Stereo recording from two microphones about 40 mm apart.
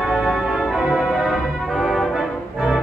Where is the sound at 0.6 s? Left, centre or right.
Centre.